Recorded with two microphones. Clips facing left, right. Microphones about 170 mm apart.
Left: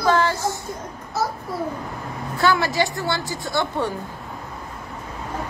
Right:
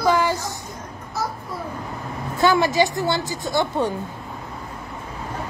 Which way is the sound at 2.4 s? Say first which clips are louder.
Right 3 dB; 20° right (ahead or behind).